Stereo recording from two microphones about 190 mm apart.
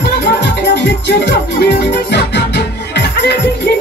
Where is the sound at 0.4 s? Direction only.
65° left (ahead or behind).